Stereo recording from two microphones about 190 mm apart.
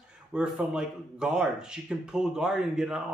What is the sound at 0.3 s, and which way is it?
Speech, 5° right (ahead or behind).